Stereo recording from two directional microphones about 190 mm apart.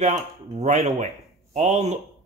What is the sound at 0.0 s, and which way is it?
A man's voice, 40° right (ahead or behind).